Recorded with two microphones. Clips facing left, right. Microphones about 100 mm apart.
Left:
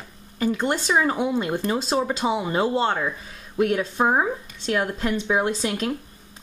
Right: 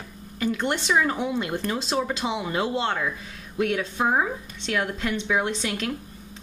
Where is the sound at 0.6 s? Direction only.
35° left (ahead or behind).